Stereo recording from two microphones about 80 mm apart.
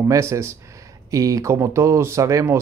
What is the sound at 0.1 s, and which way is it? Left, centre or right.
Speech, right.